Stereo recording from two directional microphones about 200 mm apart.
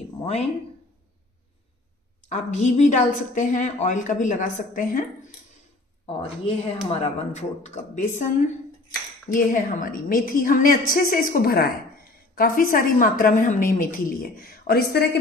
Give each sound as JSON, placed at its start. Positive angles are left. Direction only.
{"t": 2.2, "sound": "a woman's voice", "side_deg": 35}
{"t": 6.0, "sound": "a woman's voice", "side_deg": 30}
{"t": 9.3, "sound": "a woman's voice", "side_deg": 40}